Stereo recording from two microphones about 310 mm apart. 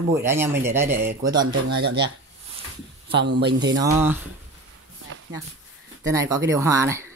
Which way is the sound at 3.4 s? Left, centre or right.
Right.